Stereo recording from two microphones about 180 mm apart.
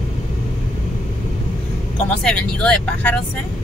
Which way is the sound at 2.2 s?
5° left (ahead or behind).